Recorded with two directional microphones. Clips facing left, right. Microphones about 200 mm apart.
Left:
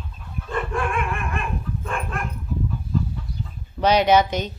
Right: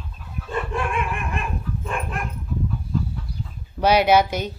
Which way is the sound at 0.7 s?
20° right (ahead or behind).